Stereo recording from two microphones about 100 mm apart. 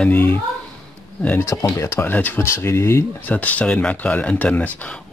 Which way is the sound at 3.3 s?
15° left (ahead or behind).